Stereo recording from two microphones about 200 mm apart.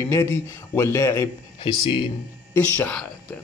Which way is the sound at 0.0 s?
15° left (ahead or behind).